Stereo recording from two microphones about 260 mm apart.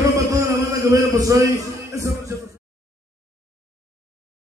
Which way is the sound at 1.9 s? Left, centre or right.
Centre.